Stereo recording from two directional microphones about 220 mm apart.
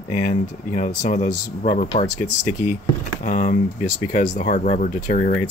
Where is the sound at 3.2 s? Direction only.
35° left (ahead or behind).